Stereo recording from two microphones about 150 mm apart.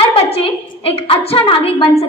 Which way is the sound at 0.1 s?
40° left (ahead or behind).